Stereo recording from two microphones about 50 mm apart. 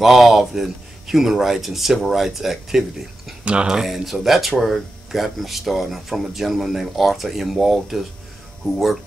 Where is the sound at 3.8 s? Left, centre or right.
Centre.